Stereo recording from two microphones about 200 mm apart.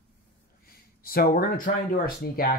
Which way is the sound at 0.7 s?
50° left (ahead or behind).